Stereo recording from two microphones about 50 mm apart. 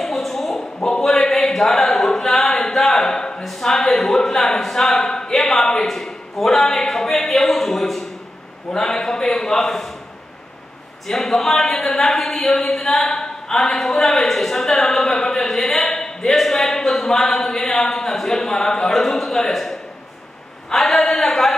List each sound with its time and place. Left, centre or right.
0.0 s a sound: centre
3.4 s speech: centre
11.1 s speech: centre